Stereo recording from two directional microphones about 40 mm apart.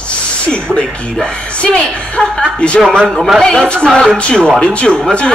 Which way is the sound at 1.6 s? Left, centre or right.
Left.